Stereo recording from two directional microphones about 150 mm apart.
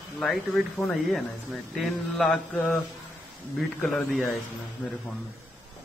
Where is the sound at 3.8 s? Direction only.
Centre (ahead or behind).